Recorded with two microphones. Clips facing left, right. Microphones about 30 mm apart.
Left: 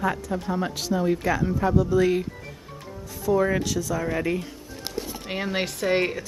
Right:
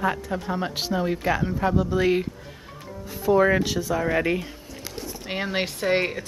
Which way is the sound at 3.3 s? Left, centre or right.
Right.